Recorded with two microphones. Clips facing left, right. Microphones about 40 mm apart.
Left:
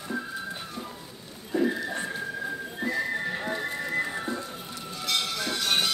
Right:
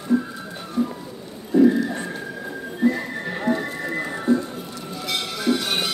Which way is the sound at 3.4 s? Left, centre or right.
Centre.